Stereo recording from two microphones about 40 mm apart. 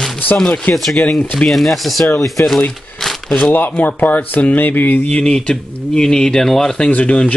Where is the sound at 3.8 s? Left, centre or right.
Left.